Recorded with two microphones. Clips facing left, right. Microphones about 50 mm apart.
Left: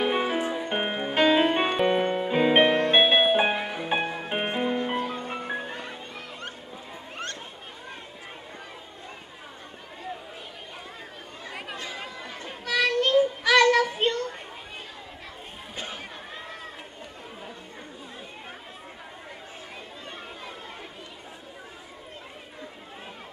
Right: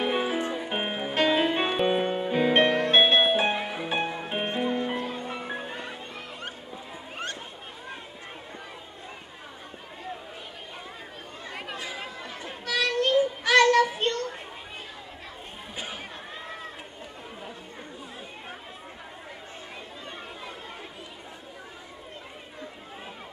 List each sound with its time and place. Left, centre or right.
0.0 s music: centre
2.4 s music: centre
4.3 s music: centre
11.5 s chatter: centre
12.9 s child singing: centre
15.7 s chatter: centre